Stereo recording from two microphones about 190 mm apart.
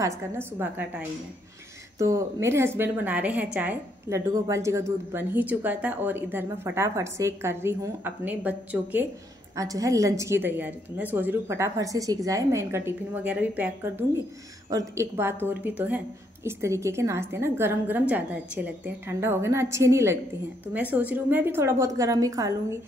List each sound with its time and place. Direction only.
0.0 s a woman's voice: 15° right (ahead or behind)